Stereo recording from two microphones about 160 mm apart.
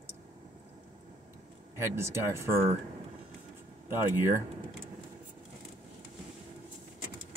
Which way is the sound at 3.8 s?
15° right (ahead or behind).